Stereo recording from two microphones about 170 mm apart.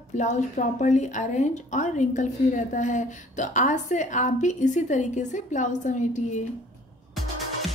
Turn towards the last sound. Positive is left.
turn(degrees=45)  # may be behind; listen again after turning